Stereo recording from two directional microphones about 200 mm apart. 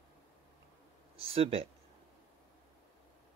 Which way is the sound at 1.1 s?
30° right (ahead or behind).